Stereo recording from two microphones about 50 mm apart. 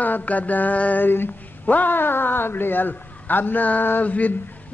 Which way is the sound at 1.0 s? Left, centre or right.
Left.